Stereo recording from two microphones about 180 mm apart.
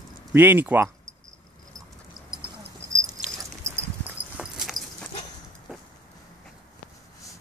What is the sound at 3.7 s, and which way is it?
Dog, 15° right (ahead or behind).